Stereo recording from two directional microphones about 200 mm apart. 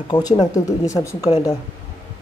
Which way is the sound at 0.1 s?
20° left (ahead or behind).